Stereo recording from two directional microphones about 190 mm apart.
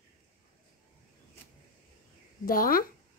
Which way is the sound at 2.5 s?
50° left (ahead or behind).